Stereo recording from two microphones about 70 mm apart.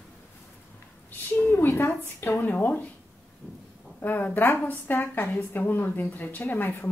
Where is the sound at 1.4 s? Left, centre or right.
Left.